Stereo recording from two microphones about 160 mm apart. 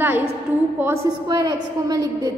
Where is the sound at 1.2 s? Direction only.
25° right (ahead or behind).